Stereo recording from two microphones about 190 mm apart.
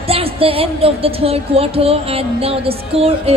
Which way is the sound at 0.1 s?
30° right (ahead or behind).